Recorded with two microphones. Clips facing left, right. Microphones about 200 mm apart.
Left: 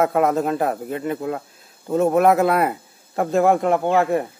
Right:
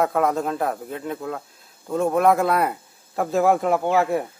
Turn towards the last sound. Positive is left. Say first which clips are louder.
# left 2 dB
turn(degrees=0)  # may be behind; listen again after turning